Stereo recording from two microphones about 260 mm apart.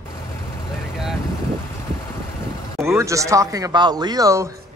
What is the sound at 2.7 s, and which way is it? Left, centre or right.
Speech, centre.